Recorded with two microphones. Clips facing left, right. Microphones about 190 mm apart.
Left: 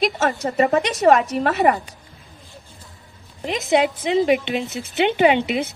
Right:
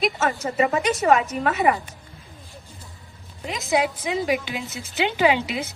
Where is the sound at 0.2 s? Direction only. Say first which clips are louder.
Left 3 dB; 40° left (ahead or behind).